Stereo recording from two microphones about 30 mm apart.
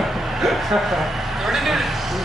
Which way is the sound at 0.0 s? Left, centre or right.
Centre.